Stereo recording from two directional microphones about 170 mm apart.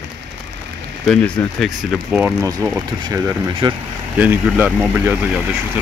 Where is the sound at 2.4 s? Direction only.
20° right (ahead or behind).